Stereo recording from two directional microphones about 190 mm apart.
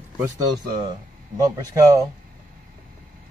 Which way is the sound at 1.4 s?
15° right (ahead or behind).